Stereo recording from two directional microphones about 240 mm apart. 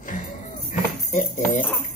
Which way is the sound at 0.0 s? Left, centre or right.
Left.